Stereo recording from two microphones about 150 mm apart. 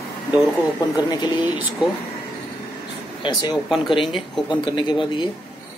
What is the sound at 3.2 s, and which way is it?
Speech, 30° left (ahead or behind).